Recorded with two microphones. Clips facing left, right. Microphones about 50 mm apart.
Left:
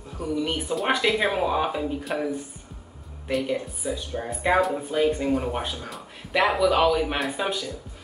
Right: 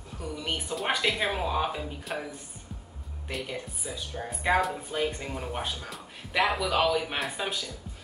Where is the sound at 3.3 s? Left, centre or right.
Centre.